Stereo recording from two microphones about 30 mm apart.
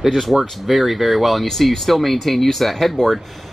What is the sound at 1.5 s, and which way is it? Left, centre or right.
Speech, centre.